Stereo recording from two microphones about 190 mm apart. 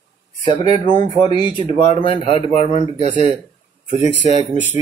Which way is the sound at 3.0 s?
40° right (ahead or behind).